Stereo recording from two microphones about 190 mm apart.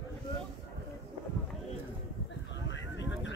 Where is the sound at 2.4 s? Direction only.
70° left (ahead or behind).